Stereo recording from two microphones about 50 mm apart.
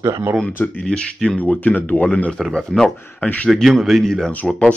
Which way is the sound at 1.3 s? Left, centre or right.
Left.